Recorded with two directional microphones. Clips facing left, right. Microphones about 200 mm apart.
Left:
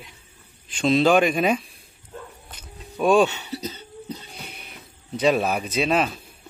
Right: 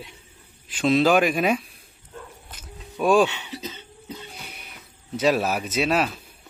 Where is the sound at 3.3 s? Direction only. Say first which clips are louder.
Left 3 dB; 40° left (ahead or behind).